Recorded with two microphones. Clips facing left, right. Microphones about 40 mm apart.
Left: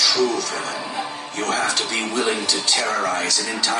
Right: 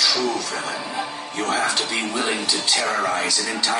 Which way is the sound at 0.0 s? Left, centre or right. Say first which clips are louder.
Left 2 dB; centre.